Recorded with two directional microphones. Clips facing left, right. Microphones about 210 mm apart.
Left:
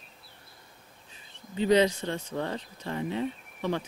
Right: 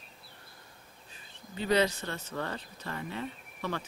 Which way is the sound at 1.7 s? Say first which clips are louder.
Left 4 dB; 10° left (ahead or behind).